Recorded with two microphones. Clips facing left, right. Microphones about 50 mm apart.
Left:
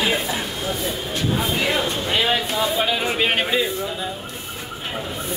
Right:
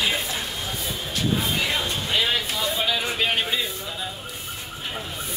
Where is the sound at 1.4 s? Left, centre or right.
Centre.